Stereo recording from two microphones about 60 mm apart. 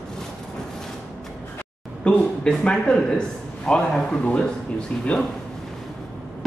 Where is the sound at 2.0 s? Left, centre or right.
Centre.